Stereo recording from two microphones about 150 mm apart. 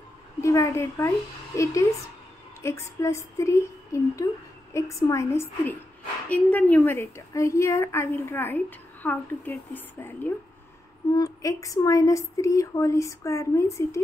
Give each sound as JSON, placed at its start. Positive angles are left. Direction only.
{"t": 0.4, "sound": "a woman's voice", "side_deg": 20}